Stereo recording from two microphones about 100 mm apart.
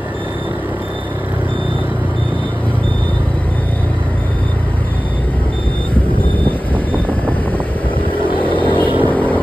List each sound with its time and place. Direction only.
8.1 s vehicle: 60° left (ahead or behind)
9.1 s vehicle: 15° left (ahead or behind)